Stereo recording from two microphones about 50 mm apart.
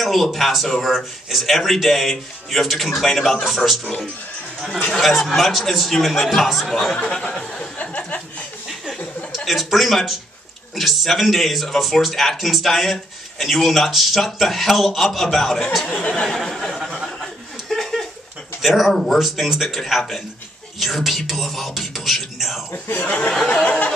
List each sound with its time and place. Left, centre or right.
0.0 s speech: centre
5.0 s speech: centre
7.2 s a sound: centre
7.8 s speech: left
9.3 s speech: centre
16.0 s a sound: centre
16.3 s a sound: centre
18.6 s speech: centre
22.7 s speech: left
23.0 s speech: left